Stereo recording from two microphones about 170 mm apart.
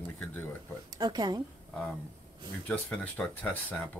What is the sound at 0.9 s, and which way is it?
Speech, 25° right (ahead or behind).